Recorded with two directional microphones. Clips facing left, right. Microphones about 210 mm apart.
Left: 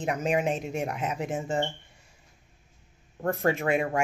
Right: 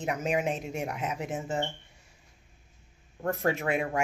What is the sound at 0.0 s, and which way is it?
Speech, 5° right (ahead or behind).